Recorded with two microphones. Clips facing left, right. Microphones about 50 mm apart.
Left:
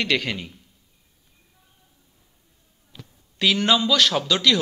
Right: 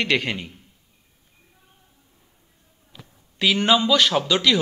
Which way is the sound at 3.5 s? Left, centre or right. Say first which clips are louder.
Right 2 dB; centre.